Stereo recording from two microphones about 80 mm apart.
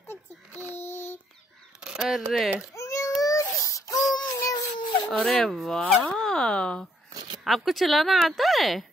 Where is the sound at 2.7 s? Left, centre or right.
Left.